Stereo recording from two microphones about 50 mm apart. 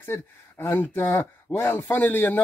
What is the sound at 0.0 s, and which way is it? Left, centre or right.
A man's voice, left.